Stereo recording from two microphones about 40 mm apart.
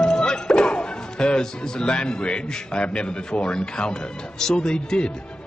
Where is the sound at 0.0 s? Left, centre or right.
Centre.